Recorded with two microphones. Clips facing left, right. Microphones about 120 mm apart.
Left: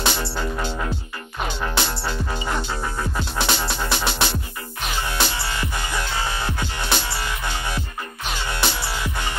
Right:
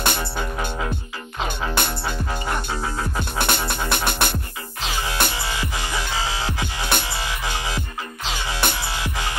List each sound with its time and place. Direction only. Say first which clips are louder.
0.0 s music: even; 55° right (ahead or behind)
1.8 s music: even; 55° right (ahead or behind)
6.1 s music: even; 90° right
6.9 s music: even; 55° right (ahead or behind)
7.2 s music: even; 90° right
8.6 s music: right 1 dB; 55° right (ahead or behind)
9.0 s music: even; 90° right